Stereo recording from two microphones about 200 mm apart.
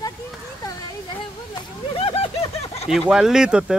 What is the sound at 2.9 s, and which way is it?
Speech, centre (ahead or behind).